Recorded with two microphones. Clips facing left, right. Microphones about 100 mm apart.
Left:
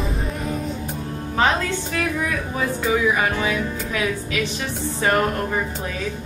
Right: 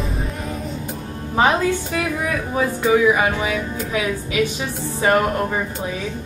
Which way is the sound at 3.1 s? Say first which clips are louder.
Right 1 dB; 15° right (ahead or behind).